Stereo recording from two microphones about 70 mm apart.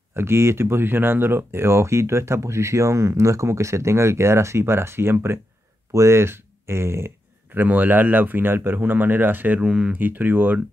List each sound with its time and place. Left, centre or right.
0.1 s speech: right
7.5 s speech: right